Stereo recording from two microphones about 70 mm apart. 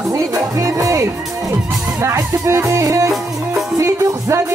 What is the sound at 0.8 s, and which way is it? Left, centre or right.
Music, right.